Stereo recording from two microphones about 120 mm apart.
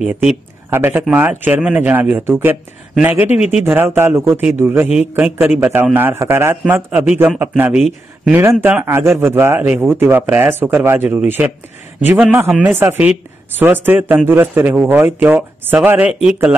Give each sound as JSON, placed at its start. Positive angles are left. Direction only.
{"t": 0.0, "sound": "speech", "side_deg": -5}
{"t": 0.7, "sound": "a man's voice", "side_deg": -20}
{"t": 3.3, "sound": "speech", "side_deg": 65}
{"t": 3.6, "sound": "a man's voice", "side_deg": -15}
{"t": 12.5, "sound": "speech", "side_deg": -20}